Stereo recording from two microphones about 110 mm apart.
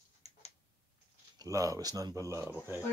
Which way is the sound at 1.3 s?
30° right (ahead or behind).